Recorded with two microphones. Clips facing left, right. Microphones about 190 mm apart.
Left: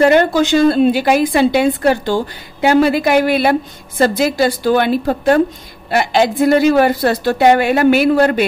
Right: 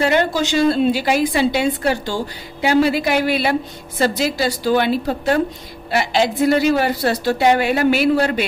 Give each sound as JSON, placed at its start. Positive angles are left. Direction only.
{"t": 0.0, "sound": "a woman's voice", "side_deg": 50}